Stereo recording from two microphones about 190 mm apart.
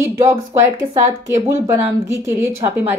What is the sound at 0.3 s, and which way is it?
Speech, 15° right (ahead or behind).